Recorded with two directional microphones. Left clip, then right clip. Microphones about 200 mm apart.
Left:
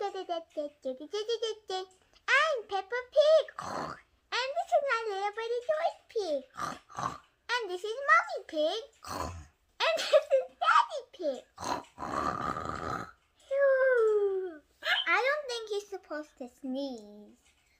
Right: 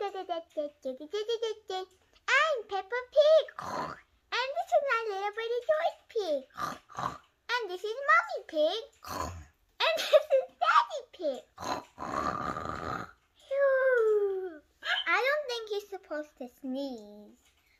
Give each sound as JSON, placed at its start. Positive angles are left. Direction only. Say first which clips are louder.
{"t": 0.0, "sound": "speech", "louder": "even", "side_deg": 5}
{"t": 14.8, "sound": "a sound", "louder": "left 2 dB", "side_deg": 55}
{"t": 15.0, "sound": "a child's voice", "louder": "right 3 dB", "side_deg": 0}